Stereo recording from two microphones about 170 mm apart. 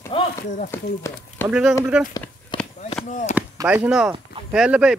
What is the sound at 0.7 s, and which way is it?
Speech, 10° left (ahead or behind).